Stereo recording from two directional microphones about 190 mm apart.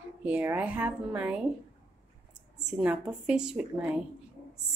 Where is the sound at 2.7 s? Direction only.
10° right (ahead or behind).